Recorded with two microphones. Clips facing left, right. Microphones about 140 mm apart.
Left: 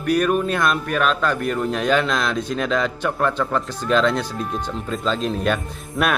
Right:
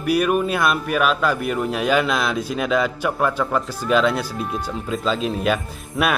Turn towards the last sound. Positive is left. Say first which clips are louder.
# even
turn(degrees=-5)  # may be behind; listen again after turning